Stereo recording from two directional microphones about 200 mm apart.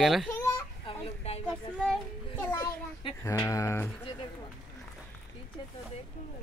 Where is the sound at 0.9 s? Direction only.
30° left (ahead or behind).